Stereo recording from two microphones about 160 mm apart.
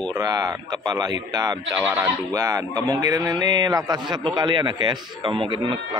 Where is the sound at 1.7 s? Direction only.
10° right (ahead or behind).